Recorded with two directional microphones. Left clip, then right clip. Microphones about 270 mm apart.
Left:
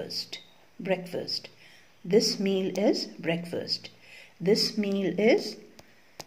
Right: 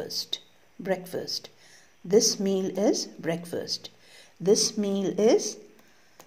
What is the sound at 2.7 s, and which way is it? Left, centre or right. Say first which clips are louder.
Speech: right 1 dB; right.